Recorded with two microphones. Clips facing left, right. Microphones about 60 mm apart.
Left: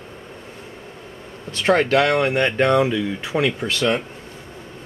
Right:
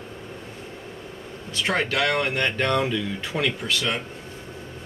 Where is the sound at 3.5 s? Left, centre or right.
Left.